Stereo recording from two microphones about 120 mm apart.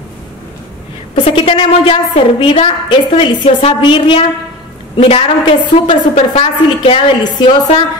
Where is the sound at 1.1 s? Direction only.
50° left (ahead or behind).